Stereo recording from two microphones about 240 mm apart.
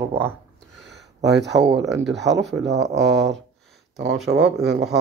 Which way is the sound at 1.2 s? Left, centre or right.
Right.